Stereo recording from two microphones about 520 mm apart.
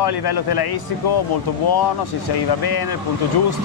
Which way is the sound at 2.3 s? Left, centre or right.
Left.